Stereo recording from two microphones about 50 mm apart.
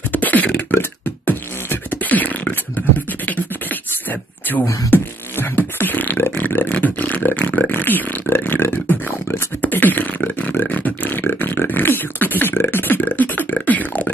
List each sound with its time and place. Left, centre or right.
0.1 s beatboxing: left
4.9 s beatboxing: left
6.7 s a sound: left
9.6 s beatboxing: left
12.8 s beatboxing: left